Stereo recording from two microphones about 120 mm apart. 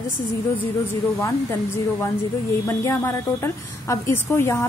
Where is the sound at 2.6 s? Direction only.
20° left (ahead or behind).